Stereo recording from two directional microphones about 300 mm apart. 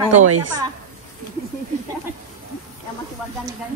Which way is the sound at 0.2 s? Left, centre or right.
Right.